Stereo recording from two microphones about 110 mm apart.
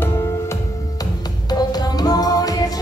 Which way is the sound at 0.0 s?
30° left (ahead or behind).